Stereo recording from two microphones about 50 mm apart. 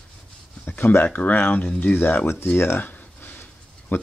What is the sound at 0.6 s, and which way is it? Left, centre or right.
Speech, left.